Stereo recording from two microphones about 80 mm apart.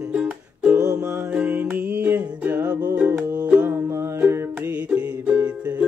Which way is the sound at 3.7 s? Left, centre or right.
Right.